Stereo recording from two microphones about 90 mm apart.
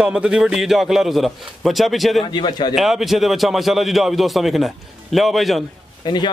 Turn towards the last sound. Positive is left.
turn(degrees=0)  # may be behind; listen again after turning